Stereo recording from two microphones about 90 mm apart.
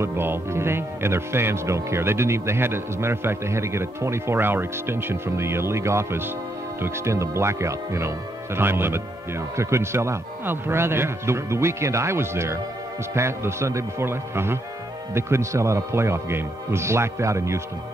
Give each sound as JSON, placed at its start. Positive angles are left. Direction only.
{"t": 0.0, "sound": "speech", "side_deg": -25}